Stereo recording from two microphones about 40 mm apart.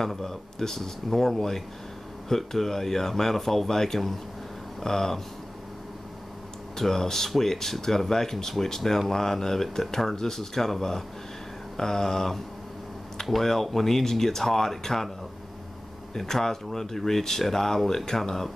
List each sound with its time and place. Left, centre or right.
0.0 s speech: centre
6.8 s speech: centre
16.2 s speech: centre